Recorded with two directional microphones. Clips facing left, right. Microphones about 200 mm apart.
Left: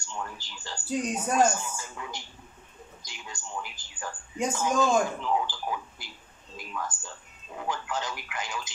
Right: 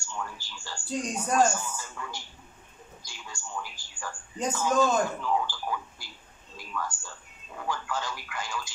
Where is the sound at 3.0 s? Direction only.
20° left (ahead or behind).